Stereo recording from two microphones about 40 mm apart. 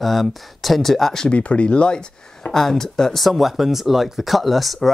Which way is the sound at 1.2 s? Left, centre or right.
Left.